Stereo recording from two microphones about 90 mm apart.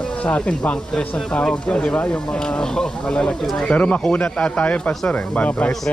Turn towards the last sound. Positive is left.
turn(degrees=15)  # may be behind; listen again after turning